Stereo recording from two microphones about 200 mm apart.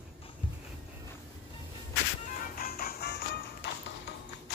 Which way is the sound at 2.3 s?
45° left (ahead or behind).